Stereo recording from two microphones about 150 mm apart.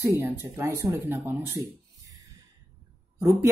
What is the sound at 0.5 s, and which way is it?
Speech, 20° right (ahead or behind).